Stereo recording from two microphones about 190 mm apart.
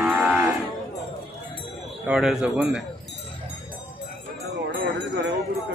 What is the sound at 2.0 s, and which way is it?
Speech, 5° right (ahead or behind).